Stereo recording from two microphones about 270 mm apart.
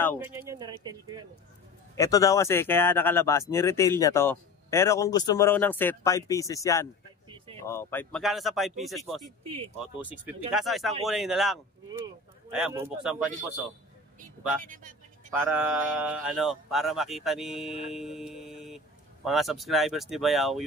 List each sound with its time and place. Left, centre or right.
0.2 s speech: centre
2.0 s speech: centre
9.2 s speech: centre
10.0 s speech: centre
14.2 s speech: right
15.5 s speech: centre